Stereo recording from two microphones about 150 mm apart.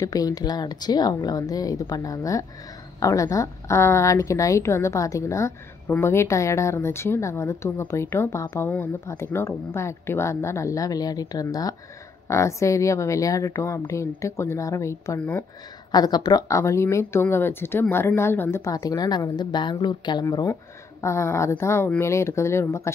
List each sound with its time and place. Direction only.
0.0 s a woman's voice: 25° left (ahead or behind)
15.9 s a woman's voice: 25° left (ahead or behind)